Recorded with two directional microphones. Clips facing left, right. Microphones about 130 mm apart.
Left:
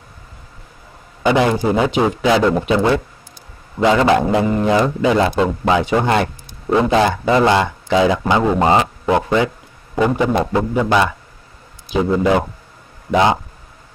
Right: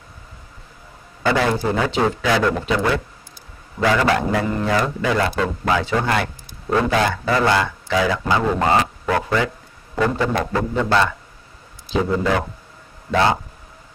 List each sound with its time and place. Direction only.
1.2 s a man's voice: 20° left (ahead or behind)